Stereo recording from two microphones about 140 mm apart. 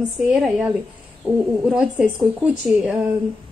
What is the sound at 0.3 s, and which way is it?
A woman's voice, 5° right (ahead or behind).